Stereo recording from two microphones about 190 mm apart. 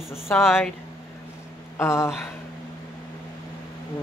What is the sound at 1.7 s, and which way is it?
Speech, 15° left (ahead or behind).